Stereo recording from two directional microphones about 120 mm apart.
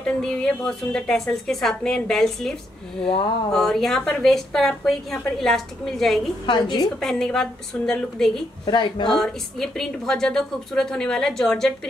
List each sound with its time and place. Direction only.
0.2 s a woman's voice: 5° left (ahead or behind)
3.5 s a woman's voice: centre (ahead or behind)
6.4 s a woman's voice: 40° left (ahead or behind)
7.0 s a woman's voice: 5° left (ahead or behind)
8.6 s a woman's voice: 40° left (ahead or behind)
9.1 s a woman's voice: 5° left (ahead or behind)